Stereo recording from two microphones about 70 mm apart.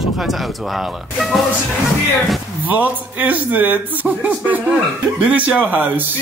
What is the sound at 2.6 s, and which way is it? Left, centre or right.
Speech, right.